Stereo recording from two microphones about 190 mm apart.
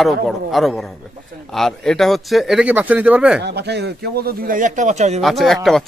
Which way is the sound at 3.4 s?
60° right (ahead or behind).